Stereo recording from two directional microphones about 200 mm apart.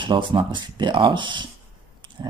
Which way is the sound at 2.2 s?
20° right (ahead or behind).